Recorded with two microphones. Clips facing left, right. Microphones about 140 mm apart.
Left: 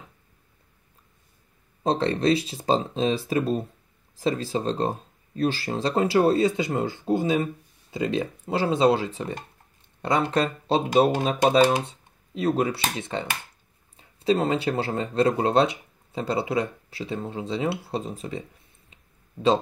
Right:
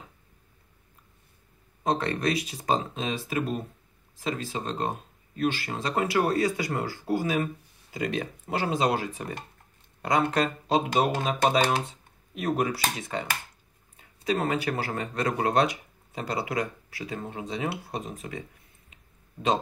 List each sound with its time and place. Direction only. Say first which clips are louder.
1.8 s speech: left 4 dB; 30° left (ahead or behind)